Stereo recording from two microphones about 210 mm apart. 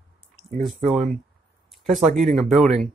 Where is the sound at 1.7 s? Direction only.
Centre (ahead or behind).